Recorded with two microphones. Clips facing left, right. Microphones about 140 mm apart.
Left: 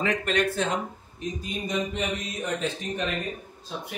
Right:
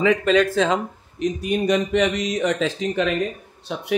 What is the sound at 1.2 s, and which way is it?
Speech, 70° right (ahead or behind).